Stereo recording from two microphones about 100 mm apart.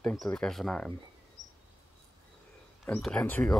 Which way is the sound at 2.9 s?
15° left (ahead or behind).